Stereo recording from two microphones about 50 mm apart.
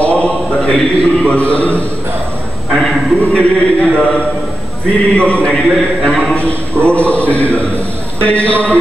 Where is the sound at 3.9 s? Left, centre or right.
Left.